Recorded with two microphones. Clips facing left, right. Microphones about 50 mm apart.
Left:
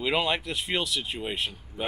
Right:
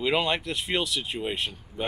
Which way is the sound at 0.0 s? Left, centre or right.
Centre.